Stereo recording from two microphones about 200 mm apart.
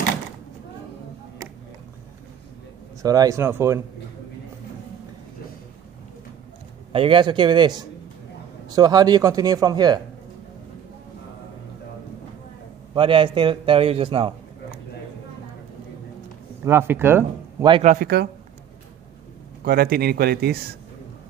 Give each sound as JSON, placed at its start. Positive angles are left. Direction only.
{"t": 3.0, "sound": "speech", "side_deg": -15}
{"t": 6.9, "sound": "a man's voice", "side_deg": -25}
{"t": 12.9, "sound": "a man's voice", "side_deg": -25}
{"t": 16.6, "sound": "speech", "side_deg": -10}
{"t": 17.8, "sound": "a man's voice", "side_deg": -45}
{"t": 19.6, "sound": "a man's voice", "side_deg": -50}